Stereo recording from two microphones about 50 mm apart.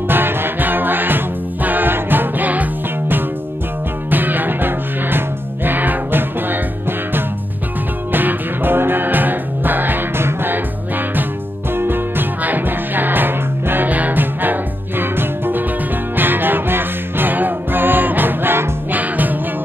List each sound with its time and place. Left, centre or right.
0.1 s music: right
11.7 s music: right
18.9 s music: right